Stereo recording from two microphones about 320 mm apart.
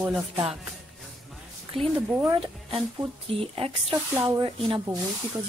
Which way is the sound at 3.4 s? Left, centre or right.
Centre.